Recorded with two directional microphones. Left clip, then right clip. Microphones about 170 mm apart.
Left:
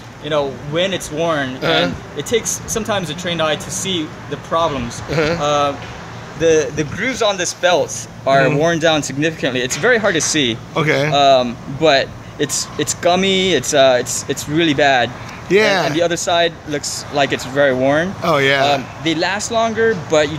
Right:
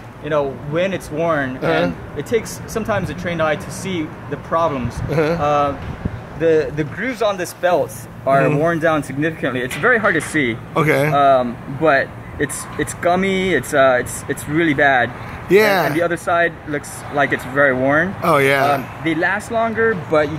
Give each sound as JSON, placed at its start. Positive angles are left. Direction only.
{"t": 0.2, "sound": "speech", "side_deg": 10}
{"t": 1.6, "sound": "speech", "side_deg": -5}
{"t": 2.1, "sound": "speech", "side_deg": 15}
{"t": 5.1, "sound": "speech", "side_deg": -5}
{"t": 5.4, "sound": "speech", "side_deg": 15}
{"t": 6.4, "sound": "speech", "side_deg": 25}
{"t": 10.7, "sound": "speech", "side_deg": -5}
{"t": 11.1, "sound": "speech", "side_deg": 25}
{"t": 15.5, "sound": "speech", "side_deg": -5}
{"t": 16.0, "sound": "speech", "side_deg": 25}
{"t": 18.2, "sound": "speech", "side_deg": 0}
{"t": 19.0, "sound": "speech", "side_deg": 20}